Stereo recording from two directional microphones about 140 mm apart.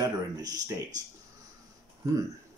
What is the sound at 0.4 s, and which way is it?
Speech, 25° right (ahead or behind).